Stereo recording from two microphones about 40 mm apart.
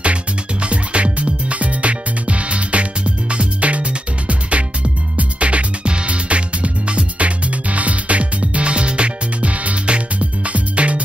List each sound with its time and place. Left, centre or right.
0.0 s music: right